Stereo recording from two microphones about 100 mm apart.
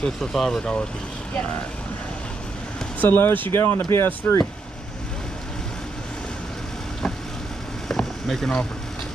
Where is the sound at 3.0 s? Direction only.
20° left (ahead or behind).